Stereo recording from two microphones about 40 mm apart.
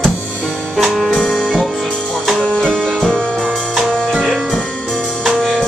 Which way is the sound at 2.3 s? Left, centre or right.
Centre.